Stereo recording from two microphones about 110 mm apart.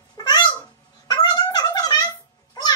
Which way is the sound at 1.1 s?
35° left (ahead or behind).